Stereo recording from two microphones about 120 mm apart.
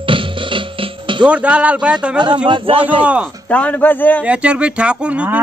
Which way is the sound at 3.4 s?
10° left (ahead or behind).